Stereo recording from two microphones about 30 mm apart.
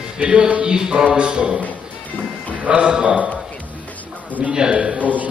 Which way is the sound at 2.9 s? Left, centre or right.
Right.